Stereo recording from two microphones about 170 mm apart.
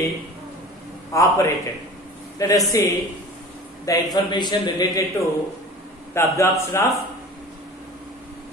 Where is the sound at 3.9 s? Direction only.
20° left (ahead or behind).